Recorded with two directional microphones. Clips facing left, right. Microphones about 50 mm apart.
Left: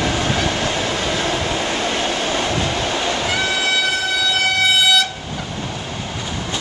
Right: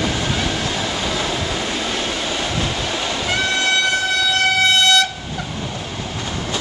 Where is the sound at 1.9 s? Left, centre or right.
Left.